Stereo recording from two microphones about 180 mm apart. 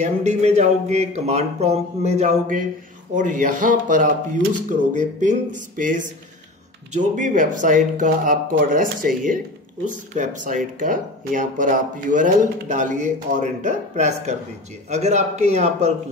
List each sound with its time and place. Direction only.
0.0 s speech: 40° right (ahead or behind)